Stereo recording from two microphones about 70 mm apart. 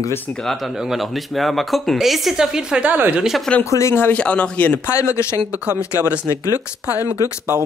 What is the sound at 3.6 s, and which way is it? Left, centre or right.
Speech, left.